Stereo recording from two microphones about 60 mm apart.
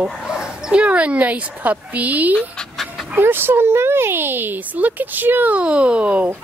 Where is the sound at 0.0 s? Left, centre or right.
Centre.